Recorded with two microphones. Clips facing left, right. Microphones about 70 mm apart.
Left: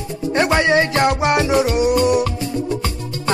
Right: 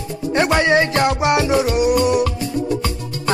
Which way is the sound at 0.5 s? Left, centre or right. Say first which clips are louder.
Even; right.